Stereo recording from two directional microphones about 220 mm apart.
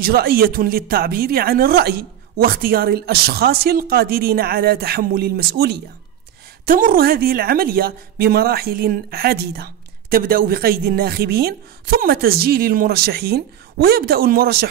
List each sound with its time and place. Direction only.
0.0 s a woman's voice: 45° right (ahead or behind)